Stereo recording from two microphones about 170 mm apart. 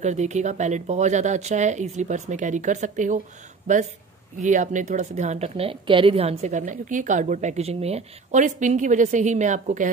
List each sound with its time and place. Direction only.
0.0 s a woman's voice: 45° right (ahead or behind)